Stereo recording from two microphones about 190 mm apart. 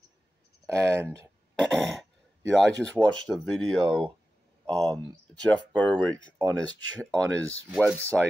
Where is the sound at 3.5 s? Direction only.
5° left (ahead or behind).